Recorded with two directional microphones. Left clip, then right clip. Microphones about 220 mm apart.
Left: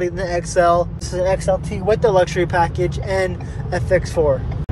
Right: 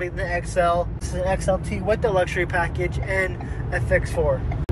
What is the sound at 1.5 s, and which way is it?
Speech, 40° left (ahead or behind).